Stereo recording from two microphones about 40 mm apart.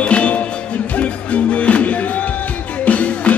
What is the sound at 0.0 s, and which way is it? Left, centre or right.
Music, left.